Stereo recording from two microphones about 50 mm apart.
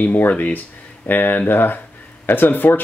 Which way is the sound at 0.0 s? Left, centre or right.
Left.